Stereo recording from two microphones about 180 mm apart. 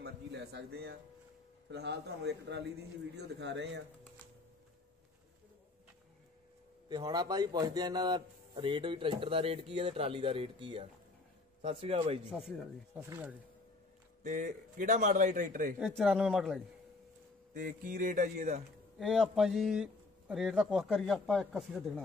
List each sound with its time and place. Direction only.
0.0 s a man's voice: 65° right (ahead or behind)
6.9 s a man's voice: 20° right (ahead or behind)
12.3 s speech: centre (ahead or behind)
14.2 s a man's voice: 45° right (ahead or behind)
15.8 s speech: centre (ahead or behind)
17.6 s a man's voice: 45° right (ahead or behind)
18.9 s speech: centre (ahead or behind)